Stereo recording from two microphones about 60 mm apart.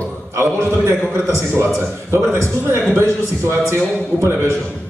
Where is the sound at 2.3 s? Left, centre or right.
Right.